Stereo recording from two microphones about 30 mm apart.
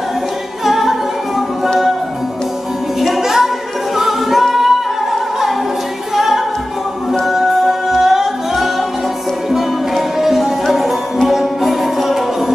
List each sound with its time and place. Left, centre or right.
0.7 s music: centre
3.2 s music: centre
8.0 s music: centre
10.1 s music: centre